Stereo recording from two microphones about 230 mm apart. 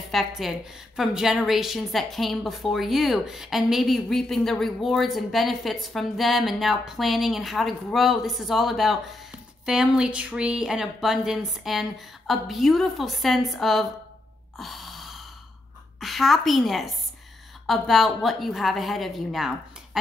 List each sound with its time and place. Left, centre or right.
0.1 s a woman's voice: centre
14.6 s gasp: centre
16.0 s a woman's voice: centre